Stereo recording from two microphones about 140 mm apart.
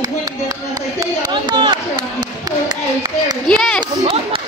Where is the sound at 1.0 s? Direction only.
30° right (ahead or behind).